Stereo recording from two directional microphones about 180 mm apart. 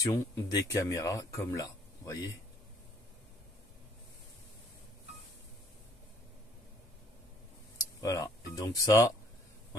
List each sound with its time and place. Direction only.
0.0 s speech: 20° left (ahead or behind)
7.7 s speech: 20° left (ahead or behind)